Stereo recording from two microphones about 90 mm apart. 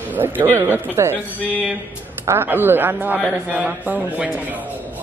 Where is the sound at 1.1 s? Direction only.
20° left (ahead or behind).